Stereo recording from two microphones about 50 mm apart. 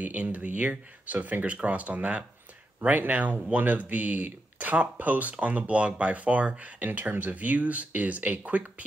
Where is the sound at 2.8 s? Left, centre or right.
Right.